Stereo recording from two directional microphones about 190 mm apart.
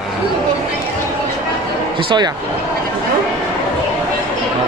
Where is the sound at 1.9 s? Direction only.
25° right (ahead or behind).